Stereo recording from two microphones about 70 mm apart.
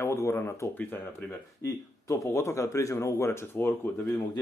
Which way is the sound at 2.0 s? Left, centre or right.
Left.